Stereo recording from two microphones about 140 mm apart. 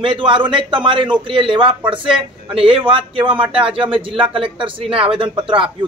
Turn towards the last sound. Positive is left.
turn(degrees=-35)  # may be behind; listen again after turning